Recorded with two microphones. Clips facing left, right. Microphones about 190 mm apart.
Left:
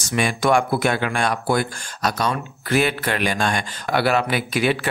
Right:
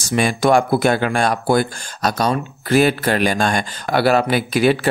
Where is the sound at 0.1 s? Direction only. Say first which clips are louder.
Right 4 dB; 35° right (ahead or behind).